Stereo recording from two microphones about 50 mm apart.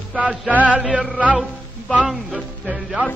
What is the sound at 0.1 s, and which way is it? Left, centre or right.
Music, right.